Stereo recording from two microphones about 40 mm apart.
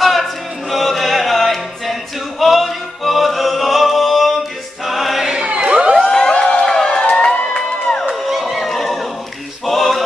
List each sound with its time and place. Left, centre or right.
0.0 s music: centre
5.2 s crowd: centre
5.5 s crowd: right
6.0 s a sound: centre
8.1 s music: centre
9.7 s male singing: centre